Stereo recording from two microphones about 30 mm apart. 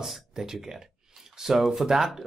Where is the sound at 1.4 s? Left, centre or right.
Centre.